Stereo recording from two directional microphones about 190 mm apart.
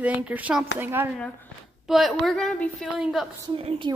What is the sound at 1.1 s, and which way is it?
Speech, 10° left (ahead or behind).